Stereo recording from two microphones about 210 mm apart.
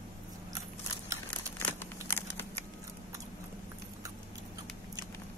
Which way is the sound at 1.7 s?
10° left (ahead or behind).